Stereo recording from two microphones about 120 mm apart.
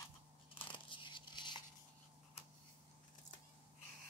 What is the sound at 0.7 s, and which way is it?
Tearing, 45° left (ahead or behind).